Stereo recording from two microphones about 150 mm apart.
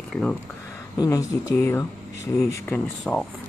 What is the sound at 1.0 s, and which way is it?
Speech, 25° left (ahead or behind).